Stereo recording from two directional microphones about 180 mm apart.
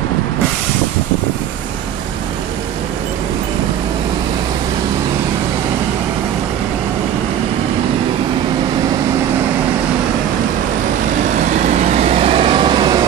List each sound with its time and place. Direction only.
11.3 s vehicle: 40° right (ahead or behind); by 13.0 s 25° right (ahead or behind)